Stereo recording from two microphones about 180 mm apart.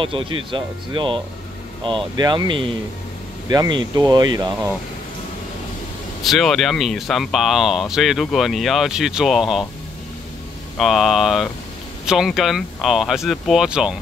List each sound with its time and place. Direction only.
0.0 s speech: 30° right (ahead or behind)
6.2 s speech: centre (ahead or behind)
10.8 s speech: centre (ahead or behind)